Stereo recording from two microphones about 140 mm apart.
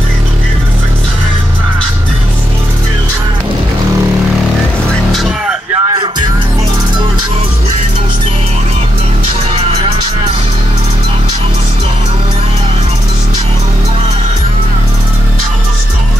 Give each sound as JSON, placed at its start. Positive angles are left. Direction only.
{"t": 5.1, "sound": "music", "side_deg": 0}
{"t": 5.8, "sound": "music", "side_deg": -30}